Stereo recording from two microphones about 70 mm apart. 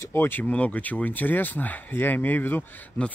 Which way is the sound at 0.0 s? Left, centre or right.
Left.